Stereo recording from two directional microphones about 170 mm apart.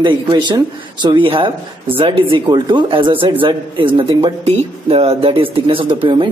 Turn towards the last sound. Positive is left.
turn(degrees=-30)  # may be behind; listen again after turning